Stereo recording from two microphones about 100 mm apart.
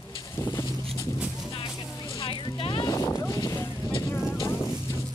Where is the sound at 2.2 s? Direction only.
60° left (ahead or behind).